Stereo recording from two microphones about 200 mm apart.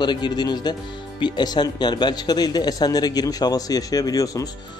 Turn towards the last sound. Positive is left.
turn(degrees=20)  # may be behind; listen again after turning